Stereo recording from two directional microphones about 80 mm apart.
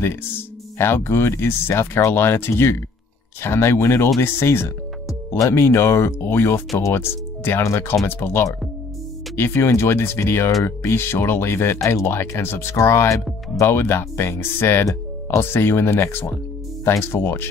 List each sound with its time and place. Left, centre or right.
0.7 s speech: left